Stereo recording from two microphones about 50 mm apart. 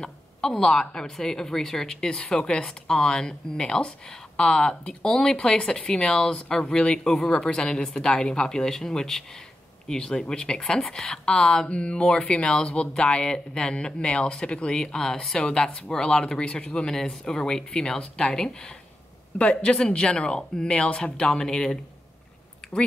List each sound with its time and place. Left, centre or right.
0.0 s speech: centre